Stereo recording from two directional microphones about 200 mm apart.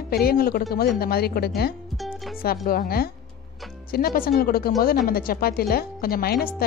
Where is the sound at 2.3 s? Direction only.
45° left (ahead or behind).